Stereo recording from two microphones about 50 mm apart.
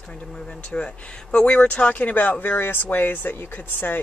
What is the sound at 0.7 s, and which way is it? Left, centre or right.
Speech, left.